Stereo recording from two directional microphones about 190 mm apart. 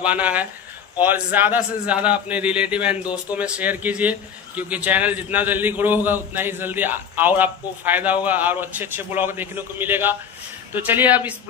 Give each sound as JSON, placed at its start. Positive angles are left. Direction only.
{"t": 0.0, "sound": "a man's voice", "side_deg": -5}